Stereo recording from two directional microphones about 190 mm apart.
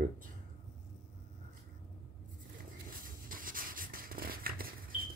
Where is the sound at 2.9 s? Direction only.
45° right (ahead or behind).